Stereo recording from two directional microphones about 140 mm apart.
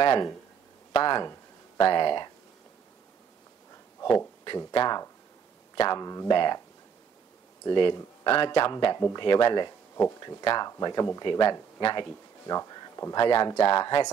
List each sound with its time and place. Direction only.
0.0 s speech: 30° left (ahead or behind)
4.5 s speech: 30° left (ahead or behind)
7.6 s speech: 35° left (ahead or behind)